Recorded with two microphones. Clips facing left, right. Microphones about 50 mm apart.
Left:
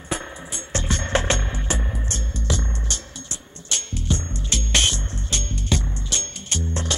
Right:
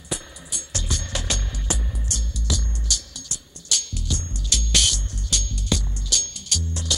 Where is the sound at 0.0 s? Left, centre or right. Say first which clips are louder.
Left 5 dB; left.